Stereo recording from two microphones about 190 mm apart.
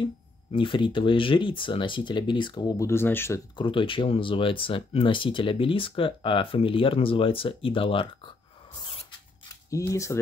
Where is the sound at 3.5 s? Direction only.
25° left (ahead or behind).